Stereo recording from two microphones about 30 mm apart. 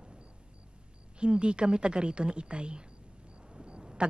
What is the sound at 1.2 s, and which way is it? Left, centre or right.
A woman's voice, right.